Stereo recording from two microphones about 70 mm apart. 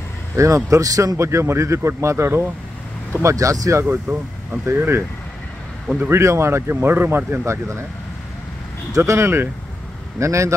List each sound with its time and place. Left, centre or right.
0.4 s speech: right
1.1 s speech: right
3.2 s speech: right
3.8 s speech: right
4.6 s speech: right
8.9 s speech: right